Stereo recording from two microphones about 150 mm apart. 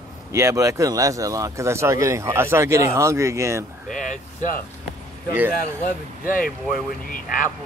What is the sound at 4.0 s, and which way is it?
Speech, 55° left (ahead or behind).